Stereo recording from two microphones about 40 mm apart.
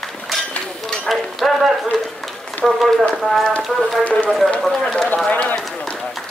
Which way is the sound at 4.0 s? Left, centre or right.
Left.